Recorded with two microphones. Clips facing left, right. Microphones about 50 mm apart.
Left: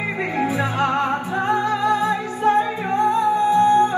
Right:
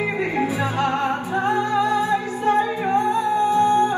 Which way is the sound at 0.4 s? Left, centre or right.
Left.